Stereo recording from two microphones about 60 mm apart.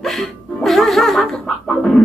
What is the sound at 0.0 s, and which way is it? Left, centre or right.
Music, centre.